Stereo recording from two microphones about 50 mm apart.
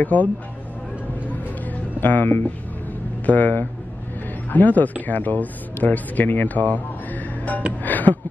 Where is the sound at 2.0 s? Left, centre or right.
Left.